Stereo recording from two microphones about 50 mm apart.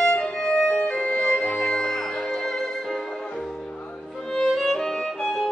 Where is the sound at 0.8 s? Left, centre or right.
Left.